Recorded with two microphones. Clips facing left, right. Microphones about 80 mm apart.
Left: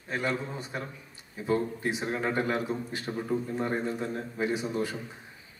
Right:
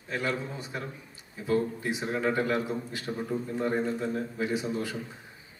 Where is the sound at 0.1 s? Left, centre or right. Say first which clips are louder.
Even; left.